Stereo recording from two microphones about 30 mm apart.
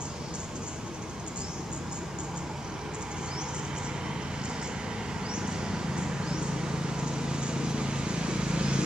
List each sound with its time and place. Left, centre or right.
5.3 s vehicle: right